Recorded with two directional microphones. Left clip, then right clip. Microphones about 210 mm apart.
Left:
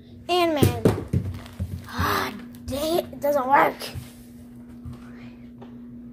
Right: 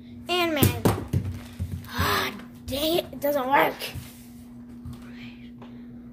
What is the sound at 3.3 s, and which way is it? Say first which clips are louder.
Speech: left 3 dB; 5° right (ahead or behind).